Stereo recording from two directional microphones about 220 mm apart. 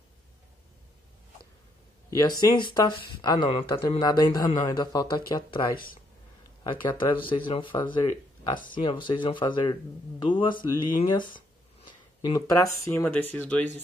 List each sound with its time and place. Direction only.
2.1 s speech: 20° left (ahead or behind)